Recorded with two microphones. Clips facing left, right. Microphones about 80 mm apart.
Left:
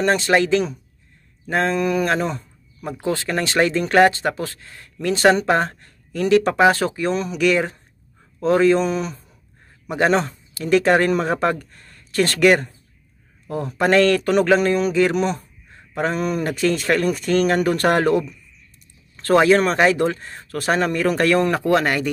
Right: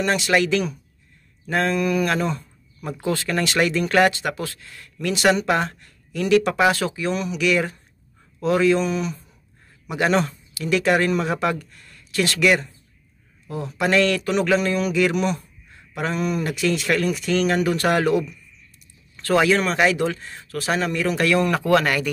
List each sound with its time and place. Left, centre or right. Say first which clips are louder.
0.0 s speech: left 3 dB; left